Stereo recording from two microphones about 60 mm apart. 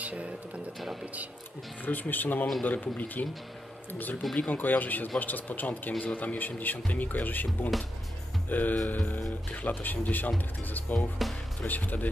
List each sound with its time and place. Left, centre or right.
0.0 s music: right
1.9 s speech: left
4.4 s speech: left